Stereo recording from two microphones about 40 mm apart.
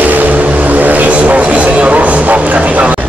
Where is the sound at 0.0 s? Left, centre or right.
Right.